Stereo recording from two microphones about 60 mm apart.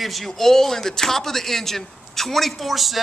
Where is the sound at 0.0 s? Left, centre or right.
Centre.